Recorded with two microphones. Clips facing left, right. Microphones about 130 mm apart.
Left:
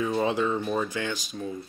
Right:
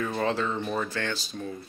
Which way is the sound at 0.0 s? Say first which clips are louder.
Left 2 dB; 15° left (ahead or behind).